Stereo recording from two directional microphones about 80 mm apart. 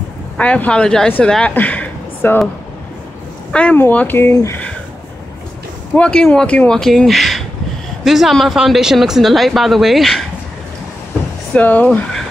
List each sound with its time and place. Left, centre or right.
0.4 s speech: centre
3.5 s speech: centre
4.2 s speech: left
5.9 s speech: centre
6.8 s speech: centre
11.5 s speech: centre